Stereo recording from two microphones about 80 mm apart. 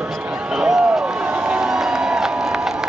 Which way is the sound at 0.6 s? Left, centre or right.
Centre.